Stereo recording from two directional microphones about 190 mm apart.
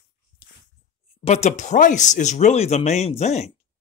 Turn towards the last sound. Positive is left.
turn(degrees=35)  # may be behind; listen again after turning